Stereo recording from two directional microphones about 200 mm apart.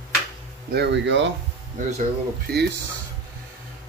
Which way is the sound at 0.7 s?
65° right (ahead or behind).